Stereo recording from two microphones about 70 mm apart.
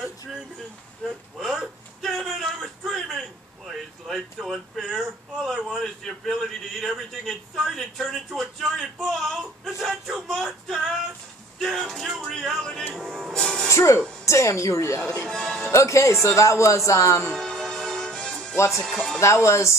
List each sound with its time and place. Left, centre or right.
1.0 s a sound: centre
11.6 s music: centre
13.7 s music: left
14.2 s speech: left
15.2 s music: centre
15.7 s speech: left
17.4 s music: centre
18.7 s speech: centre
19.1 s speech: left